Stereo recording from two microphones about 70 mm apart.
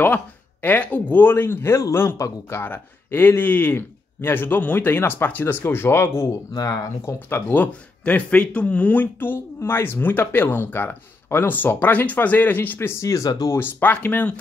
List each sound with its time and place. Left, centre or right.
0.0 s speech: left
2.0 s speech: left
2.6 s speech: left
6.5 s speech: left
7.1 s speech: left
13.0 s speech: left
13.5 s speech: left